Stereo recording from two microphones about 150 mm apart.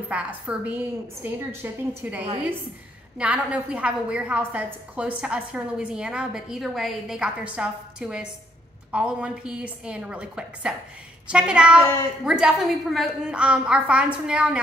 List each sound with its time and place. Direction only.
0.1 s a woman's voice: 10° right (ahead or behind)